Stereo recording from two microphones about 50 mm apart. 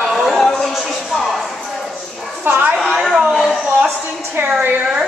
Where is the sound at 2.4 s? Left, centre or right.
Right.